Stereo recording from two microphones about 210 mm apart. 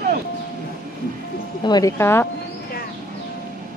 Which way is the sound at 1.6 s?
15° left (ahead or behind).